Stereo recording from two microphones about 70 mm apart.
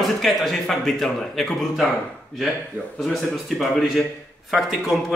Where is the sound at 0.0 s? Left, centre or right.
Centre.